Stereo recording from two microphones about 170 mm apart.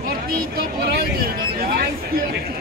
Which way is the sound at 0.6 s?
60° right (ahead or behind).